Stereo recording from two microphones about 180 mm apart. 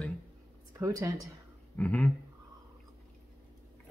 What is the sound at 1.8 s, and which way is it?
Speech, 5° left (ahead or behind).